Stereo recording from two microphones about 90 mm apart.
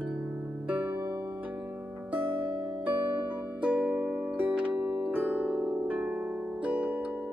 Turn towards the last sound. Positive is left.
turn(degrees=-15)  # may be behind; listen again after turning